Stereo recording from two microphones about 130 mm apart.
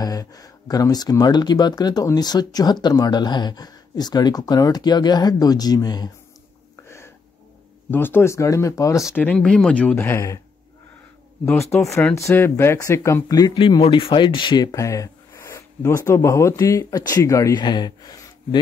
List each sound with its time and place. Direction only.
0.0 s speech: 30° left (ahead or behind)
7.9 s speech: 15° left (ahead or behind)
12.2 s speech: 20° left (ahead or behind)
13.6 s speech: 40° left (ahead or behind)